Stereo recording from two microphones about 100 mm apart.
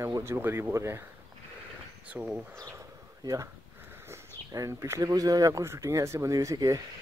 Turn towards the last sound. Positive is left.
turn(degrees=-35)  # may be behind; listen again after turning